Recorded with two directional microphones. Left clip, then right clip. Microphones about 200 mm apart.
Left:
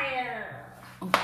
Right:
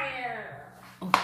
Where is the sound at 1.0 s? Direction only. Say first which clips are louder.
Right 1 dB; 15° right (ahead or behind).